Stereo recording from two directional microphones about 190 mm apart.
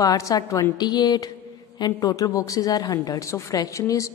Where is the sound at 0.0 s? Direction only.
20° left (ahead or behind).